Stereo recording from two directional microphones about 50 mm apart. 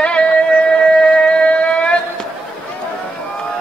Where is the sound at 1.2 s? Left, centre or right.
Left.